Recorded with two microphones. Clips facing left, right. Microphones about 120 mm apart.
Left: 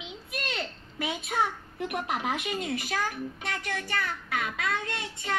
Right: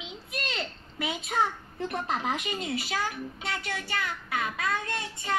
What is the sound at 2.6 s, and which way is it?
Speech, 50° left (ahead or behind).